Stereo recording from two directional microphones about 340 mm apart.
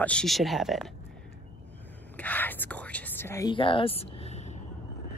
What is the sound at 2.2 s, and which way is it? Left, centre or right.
Whispering, centre.